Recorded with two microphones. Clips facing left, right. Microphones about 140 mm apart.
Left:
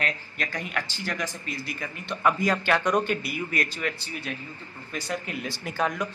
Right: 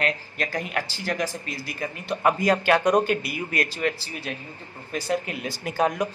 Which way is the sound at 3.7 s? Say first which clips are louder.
Right 5 dB; 35° right (ahead or behind).